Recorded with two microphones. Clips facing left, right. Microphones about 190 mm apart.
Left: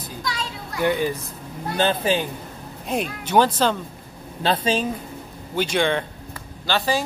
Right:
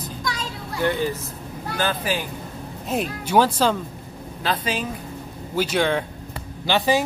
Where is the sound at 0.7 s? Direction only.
15° left (ahead or behind).